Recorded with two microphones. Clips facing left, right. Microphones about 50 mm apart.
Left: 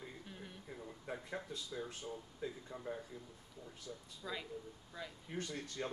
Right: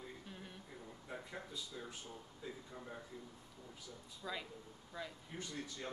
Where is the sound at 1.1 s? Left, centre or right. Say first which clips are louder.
Left 3 dB; left.